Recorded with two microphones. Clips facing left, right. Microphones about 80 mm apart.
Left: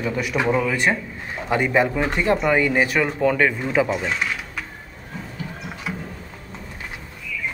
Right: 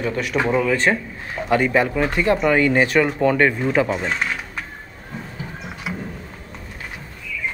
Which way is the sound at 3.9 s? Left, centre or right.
Centre.